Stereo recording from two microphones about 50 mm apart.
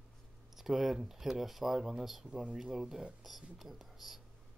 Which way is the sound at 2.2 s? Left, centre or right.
Centre.